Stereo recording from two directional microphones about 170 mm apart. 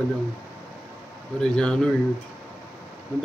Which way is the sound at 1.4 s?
5° left (ahead or behind).